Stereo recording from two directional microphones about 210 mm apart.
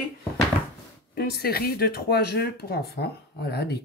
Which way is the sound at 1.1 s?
50° left (ahead or behind).